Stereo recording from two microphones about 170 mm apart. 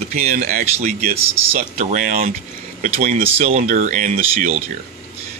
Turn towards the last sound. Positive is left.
turn(degrees=-45)  # may be behind; listen again after turning